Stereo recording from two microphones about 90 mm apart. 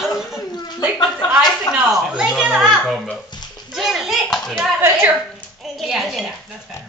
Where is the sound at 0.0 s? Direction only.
5° right (ahead or behind).